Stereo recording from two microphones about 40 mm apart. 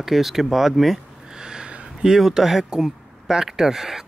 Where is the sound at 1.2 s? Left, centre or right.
Centre.